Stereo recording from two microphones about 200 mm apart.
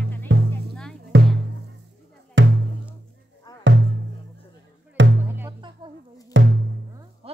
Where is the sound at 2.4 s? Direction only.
70° right (ahead or behind).